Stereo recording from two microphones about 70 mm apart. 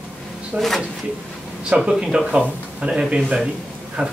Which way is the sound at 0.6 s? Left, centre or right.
Centre.